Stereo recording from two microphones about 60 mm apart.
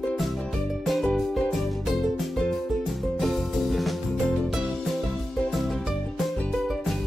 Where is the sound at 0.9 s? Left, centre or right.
Centre.